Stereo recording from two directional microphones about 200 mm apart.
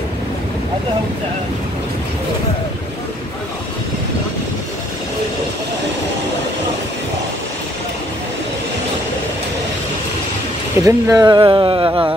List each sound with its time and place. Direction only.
10.8 s speech: 15° right (ahead or behind)